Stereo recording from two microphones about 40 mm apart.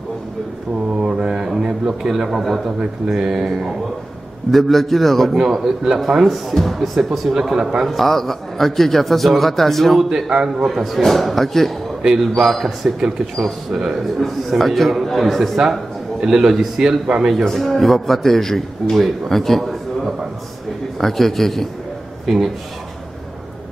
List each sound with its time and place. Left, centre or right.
1.0 s mantra: right
1.6 s a man's voice: centre
4.5 s a man's voice: centre
5.3 s a man's voice: centre
7.8 s a man's voice: centre
12.0 s a man's voice: centre
12.4 s a man's voice: centre
14.6 s a man's voice: centre
21.0 s a man's voice: centre
22.2 s speech: centre